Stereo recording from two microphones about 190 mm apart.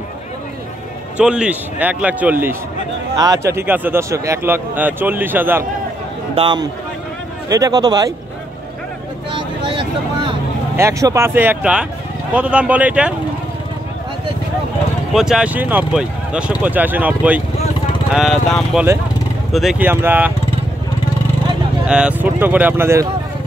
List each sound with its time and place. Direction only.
1.1 s speech: 5° right (ahead or behind)
6.3 s speech: 25° right (ahead or behind)
9.3 s vehicle: 25° right (ahead or behind)
10.8 s speech: 15° right (ahead or behind)
15.1 s speech: 5° right (ahead or behind)
21.8 s speech: 5° right (ahead or behind)